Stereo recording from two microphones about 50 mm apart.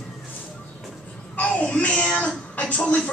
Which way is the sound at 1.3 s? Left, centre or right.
Left.